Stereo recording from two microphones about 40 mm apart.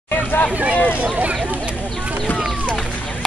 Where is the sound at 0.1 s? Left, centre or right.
Left.